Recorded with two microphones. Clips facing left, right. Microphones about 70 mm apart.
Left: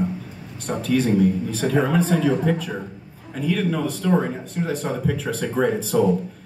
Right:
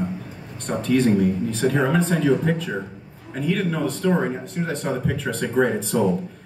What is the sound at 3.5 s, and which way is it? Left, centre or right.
A man's voice, centre.